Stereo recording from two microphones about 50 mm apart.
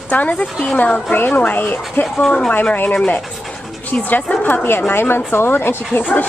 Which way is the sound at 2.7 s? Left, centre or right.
Left.